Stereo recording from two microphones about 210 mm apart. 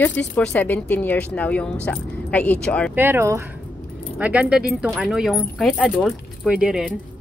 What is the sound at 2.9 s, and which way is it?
Speech, 10° right (ahead or behind).